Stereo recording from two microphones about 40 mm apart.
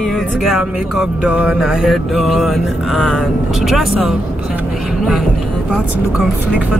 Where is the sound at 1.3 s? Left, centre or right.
Right.